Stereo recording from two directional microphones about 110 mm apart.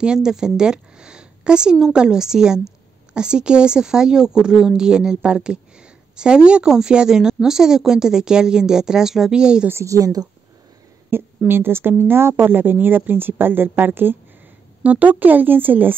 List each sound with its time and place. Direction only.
0.0 s speech: 5° right (ahead or behind)
9.7 s a woman's voice: 25° right (ahead or behind)
11.1 s a woman's voice: 20° right (ahead or behind)